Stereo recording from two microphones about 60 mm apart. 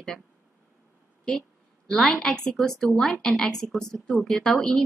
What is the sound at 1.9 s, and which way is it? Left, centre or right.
A woman's voice, centre.